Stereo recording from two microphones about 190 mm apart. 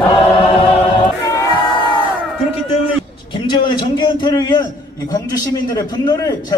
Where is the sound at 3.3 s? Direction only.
25° left (ahead or behind).